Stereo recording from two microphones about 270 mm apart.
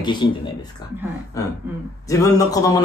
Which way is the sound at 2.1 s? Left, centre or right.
Centre.